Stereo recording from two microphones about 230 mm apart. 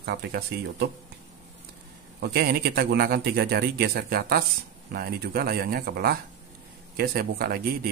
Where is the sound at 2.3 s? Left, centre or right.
Right.